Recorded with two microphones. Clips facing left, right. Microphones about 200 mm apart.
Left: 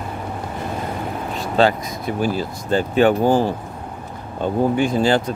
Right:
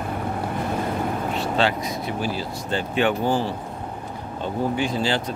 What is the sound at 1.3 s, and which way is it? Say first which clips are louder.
Speech: left 7 dB; 40° left (ahead or behind).